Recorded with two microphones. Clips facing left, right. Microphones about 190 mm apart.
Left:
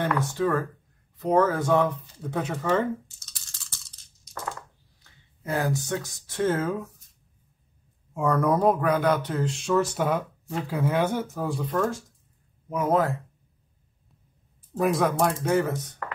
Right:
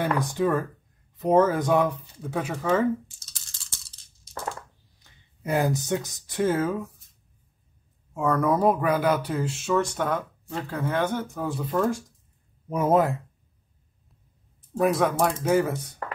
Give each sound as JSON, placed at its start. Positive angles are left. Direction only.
{"t": 0.0, "sound": "speech", "side_deg": -15}
{"t": 4.2, "sound": "crushing", "side_deg": -30}
{"t": 5.4, "sound": "speech", "side_deg": -15}
{"t": 8.1, "sound": "speech", "side_deg": 0}
{"t": 12.6, "sound": "speech", "side_deg": -20}
{"t": 14.7, "sound": "speech", "side_deg": 0}